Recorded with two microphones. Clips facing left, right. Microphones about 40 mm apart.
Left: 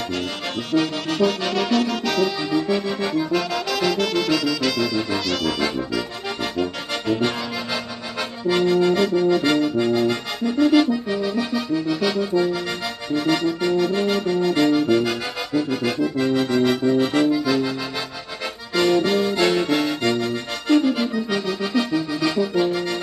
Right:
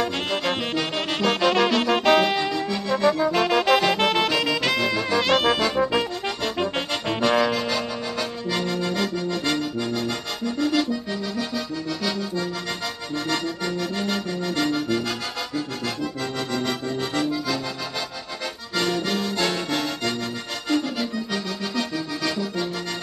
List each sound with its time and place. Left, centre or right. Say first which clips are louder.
0.7 s saxophone: left 4 dB; right
1.5 s music: right 1 dB; right
2.5 s music: left 3 dB; centre
3.3 s saxophone: right 4 dB; right
5.2 s brass instrument: right 4 dB; right
7.5 s accordion: right 2 dB; centre
18.8 s accordion: left 6 dB; centre